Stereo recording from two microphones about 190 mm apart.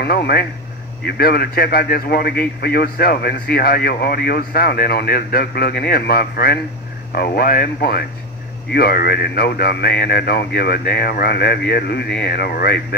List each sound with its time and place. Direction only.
0.0 s a man's voice: 55° left (ahead or behind)